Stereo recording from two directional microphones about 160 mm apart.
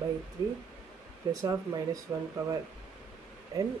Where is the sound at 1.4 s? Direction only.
20° right (ahead or behind).